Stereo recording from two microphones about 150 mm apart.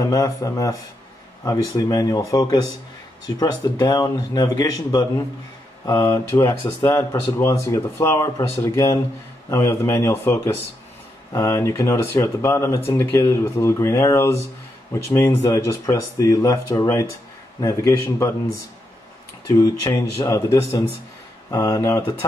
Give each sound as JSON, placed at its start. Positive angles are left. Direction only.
{"t": 0.0, "sound": "speech", "side_deg": 25}